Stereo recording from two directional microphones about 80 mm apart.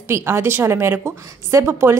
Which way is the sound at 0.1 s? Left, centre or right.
Right.